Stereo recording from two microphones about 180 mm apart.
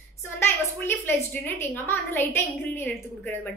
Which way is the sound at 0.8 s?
10° left (ahead or behind).